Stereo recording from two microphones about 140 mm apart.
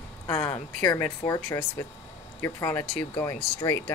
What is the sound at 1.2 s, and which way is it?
Speech, 25° left (ahead or behind).